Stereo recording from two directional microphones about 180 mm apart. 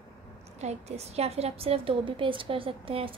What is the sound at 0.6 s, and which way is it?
A woman's voice, 35° right (ahead or behind).